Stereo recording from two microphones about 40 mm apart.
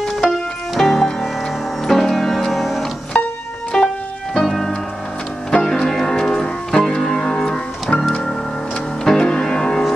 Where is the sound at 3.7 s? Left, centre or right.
Centre.